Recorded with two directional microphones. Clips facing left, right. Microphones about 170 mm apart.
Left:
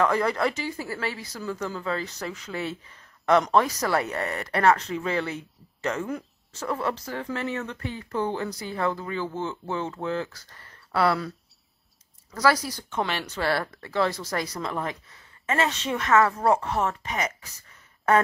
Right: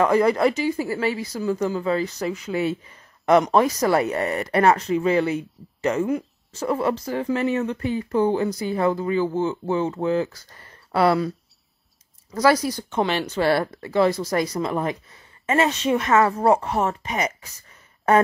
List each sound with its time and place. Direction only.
0.0 s speech: 15° right (ahead or behind)